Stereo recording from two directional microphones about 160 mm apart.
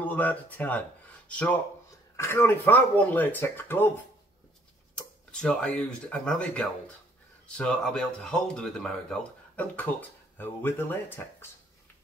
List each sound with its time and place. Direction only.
0.0 s speech: 10° left (ahead or behind)
4.9 s speech: 5° left (ahead or behind)